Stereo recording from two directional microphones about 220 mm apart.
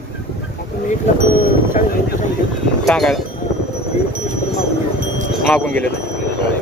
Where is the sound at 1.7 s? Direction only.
35° left (ahead or behind).